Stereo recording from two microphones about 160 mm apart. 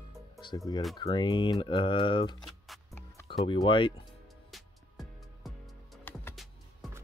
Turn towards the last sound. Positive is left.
turn(degrees=0)  # may be behind; listen again after turning